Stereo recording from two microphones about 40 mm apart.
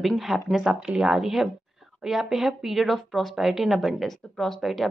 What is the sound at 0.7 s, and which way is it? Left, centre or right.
Speech, right.